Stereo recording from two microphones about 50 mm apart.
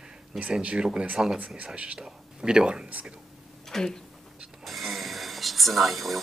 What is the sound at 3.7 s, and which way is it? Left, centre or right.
Speech, centre.